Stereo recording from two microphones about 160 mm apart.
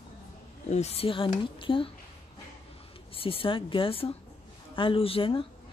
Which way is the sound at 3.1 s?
35° left (ahead or behind).